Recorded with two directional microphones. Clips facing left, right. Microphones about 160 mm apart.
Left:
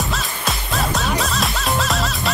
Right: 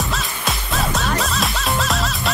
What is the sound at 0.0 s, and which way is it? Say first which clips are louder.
Music: even; centre (ahead or behind).